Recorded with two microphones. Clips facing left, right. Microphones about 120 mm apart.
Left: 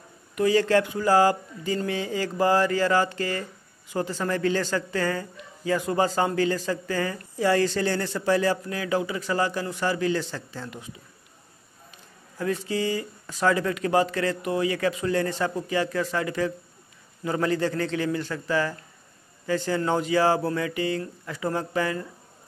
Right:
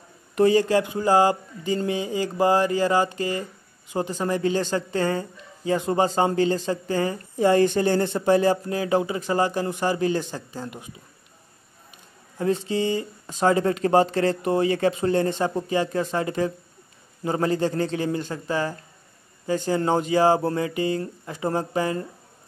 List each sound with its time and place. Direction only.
0.6 s speech: 15° right (ahead or behind)
12.4 s speech: 25° right (ahead or behind)